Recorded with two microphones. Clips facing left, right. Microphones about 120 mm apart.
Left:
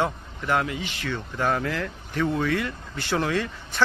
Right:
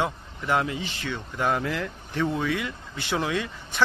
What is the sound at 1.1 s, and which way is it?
Speech, 10° right (ahead or behind).